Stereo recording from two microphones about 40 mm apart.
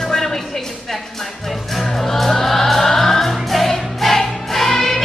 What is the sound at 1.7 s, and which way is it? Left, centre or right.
Music, centre.